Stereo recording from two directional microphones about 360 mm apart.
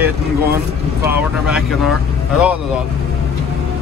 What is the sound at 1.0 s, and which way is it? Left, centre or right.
Speech, centre.